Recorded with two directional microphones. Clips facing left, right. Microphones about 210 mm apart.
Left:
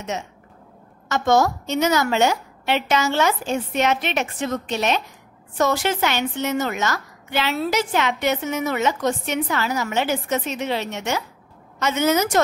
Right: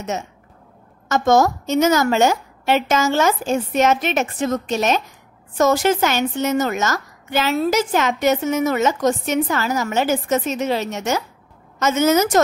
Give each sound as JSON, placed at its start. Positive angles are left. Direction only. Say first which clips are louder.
{"t": 1.0, "sound": "a woman's voice", "louder": "right 3 dB", "side_deg": -45}